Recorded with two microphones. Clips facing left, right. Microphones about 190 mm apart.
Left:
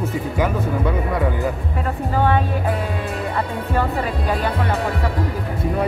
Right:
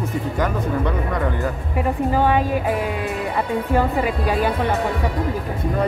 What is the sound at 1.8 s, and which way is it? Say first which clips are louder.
Speech: right 3 dB; 15° right (ahead or behind).